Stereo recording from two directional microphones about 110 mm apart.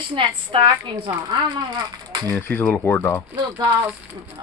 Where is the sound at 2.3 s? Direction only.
15° left (ahead or behind).